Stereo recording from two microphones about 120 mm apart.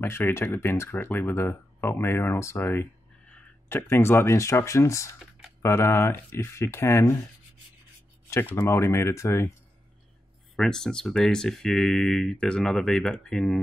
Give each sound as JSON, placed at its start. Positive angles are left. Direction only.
{"t": 0.0, "sound": "speech", "side_deg": 20}
{"t": 8.5, "sound": "speech", "side_deg": 20}
{"t": 10.5, "sound": "speech", "side_deg": 5}